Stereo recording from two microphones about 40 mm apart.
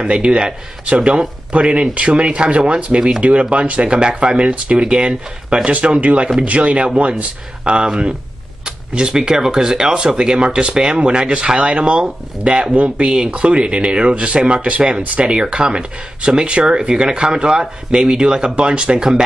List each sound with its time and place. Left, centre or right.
0.0 s speech: right
5.7 s speech: right
13.1 s speech: right